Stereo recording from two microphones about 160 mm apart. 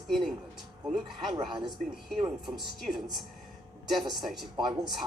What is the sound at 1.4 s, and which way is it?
Speech, 30° right (ahead or behind).